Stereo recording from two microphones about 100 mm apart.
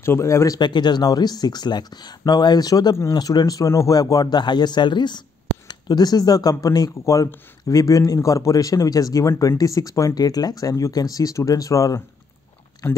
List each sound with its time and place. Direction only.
0.0 s speech: 25° left (ahead or behind)
0.6 s speech: 50° left (ahead or behind); by 13.0 s 25° left (ahead or behind)